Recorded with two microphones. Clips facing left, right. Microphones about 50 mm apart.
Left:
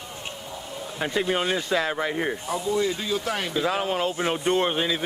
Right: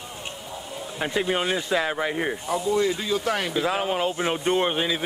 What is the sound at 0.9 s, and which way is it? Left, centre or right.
A man's voice, centre.